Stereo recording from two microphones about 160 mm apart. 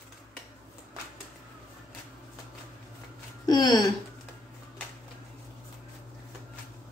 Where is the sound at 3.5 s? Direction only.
25° left (ahead or behind).